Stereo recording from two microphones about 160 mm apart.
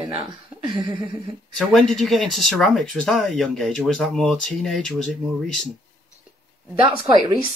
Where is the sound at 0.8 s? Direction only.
30° right (ahead or behind).